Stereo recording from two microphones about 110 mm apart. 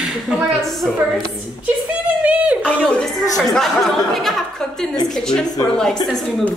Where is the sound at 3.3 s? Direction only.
Centre (ahead or behind).